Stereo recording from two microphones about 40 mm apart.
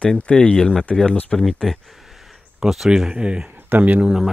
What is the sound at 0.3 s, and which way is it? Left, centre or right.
Speech, left.